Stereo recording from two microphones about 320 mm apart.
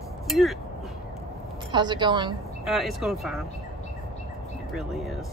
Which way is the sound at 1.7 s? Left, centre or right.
Centre.